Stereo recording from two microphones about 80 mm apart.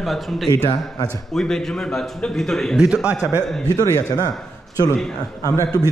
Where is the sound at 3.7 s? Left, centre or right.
Left.